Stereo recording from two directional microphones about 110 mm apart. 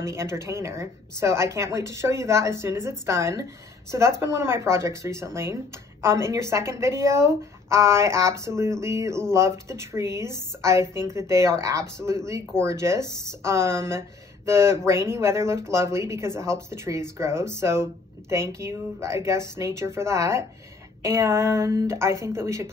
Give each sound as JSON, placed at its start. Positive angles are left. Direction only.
{"t": 0.0, "sound": "speech", "side_deg": -25}